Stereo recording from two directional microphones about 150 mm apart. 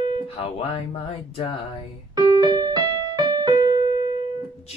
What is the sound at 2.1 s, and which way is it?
Music, 30° right (ahead or behind).